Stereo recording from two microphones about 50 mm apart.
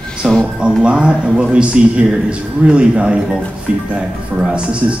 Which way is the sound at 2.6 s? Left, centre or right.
Centre.